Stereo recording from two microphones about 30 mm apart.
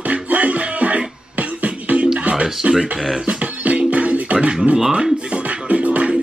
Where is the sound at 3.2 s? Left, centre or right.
Right.